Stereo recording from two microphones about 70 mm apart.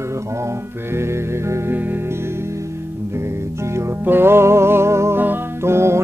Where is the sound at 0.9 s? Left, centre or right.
Right.